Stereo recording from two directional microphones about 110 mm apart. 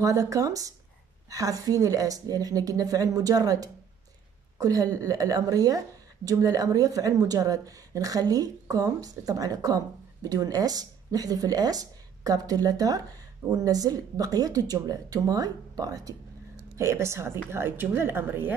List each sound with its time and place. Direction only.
0.0 s a woman's voice: 30° right (ahead or behind)